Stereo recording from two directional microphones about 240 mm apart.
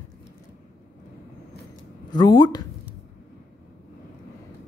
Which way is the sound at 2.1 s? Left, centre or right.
Centre.